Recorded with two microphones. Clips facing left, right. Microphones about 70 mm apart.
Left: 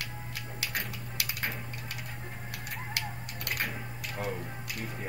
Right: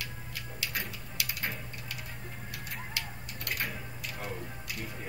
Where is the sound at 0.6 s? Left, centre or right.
Left.